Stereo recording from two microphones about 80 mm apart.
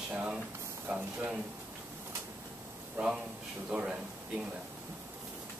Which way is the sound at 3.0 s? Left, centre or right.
Centre.